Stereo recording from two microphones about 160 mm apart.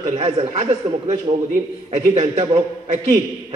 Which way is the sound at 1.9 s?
40° right (ahead or behind).